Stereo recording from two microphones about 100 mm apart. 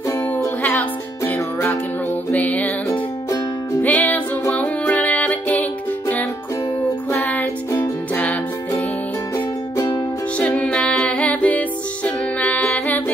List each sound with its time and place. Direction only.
0.6 s music: 15° left (ahead or behind)
9.8 s music: 45° left (ahead or behind)
10.3 s music: 10° left (ahead or behind)